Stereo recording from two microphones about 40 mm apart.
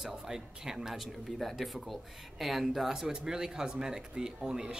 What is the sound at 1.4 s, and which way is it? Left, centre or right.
Speech, centre.